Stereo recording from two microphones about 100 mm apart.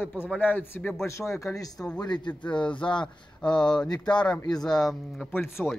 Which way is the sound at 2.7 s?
55° left (ahead or behind).